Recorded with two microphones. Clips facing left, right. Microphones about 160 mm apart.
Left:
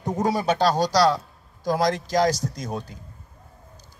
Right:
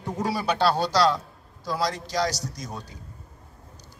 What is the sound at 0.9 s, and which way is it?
Speech, 10° left (ahead or behind).